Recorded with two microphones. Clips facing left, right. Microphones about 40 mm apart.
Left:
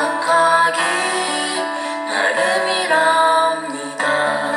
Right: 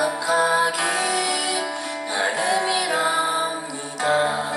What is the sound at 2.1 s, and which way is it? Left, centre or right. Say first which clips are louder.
Music: left 5 dB; left.